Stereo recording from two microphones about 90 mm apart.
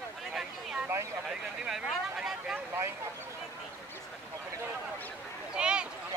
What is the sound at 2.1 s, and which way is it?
Vehicle, 10° right (ahead or behind).